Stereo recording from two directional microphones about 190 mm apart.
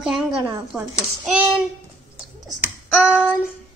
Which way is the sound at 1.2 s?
5° right (ahead or behind).